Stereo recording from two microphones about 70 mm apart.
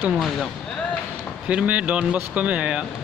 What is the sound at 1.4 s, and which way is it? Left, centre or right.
A man's voice, centre.